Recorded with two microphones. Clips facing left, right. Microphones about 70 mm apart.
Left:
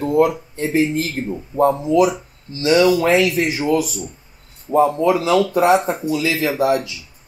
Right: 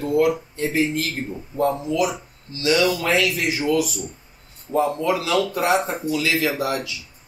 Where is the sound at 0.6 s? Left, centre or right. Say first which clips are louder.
Left 5 dB; left.